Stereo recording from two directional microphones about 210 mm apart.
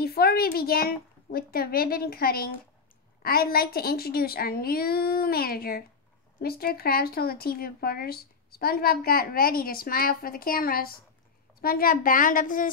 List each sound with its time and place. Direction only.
0.0 s a woman's voice: 45° left (ahead or behind)